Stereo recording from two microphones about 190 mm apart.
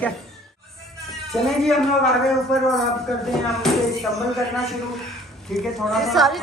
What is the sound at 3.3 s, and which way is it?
Speech, centre (ahead or behind).